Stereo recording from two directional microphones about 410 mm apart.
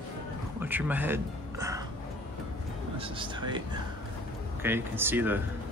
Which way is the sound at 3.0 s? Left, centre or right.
Centre.